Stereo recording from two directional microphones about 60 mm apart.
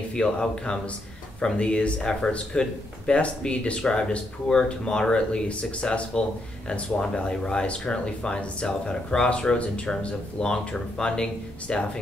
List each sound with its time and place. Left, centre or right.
0.1 s speech: centre